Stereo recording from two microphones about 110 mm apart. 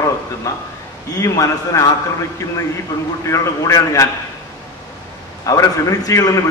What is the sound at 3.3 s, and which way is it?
Speech, 30° left (ahead or behind).